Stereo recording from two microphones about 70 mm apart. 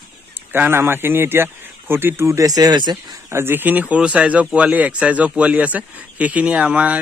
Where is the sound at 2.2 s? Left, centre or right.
Right.